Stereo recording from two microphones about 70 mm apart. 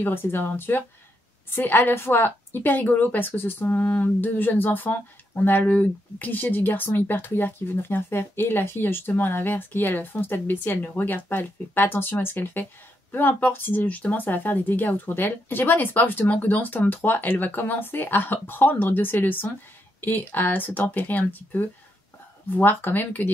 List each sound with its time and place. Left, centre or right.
0.0 s a woman's voice: left